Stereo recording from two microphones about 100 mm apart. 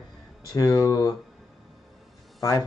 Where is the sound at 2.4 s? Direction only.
30° left (ahead or behind).